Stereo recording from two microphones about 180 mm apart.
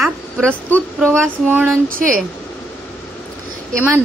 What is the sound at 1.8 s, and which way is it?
Speech, 50° right (ahead or behind).